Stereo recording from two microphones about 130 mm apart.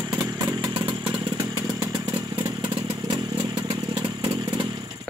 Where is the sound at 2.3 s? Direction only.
35° right (ahead or behind).